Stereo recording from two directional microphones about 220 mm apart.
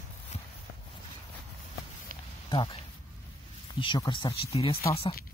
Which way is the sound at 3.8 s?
20° left (ahead or behind).